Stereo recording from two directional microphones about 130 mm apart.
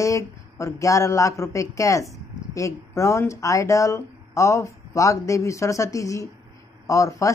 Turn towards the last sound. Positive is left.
turn(degrees=25)  # may be behind; listen again after turning